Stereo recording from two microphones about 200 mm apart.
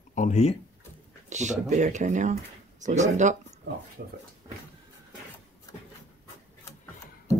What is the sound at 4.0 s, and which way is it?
Speech, 50° right (ahead or behind).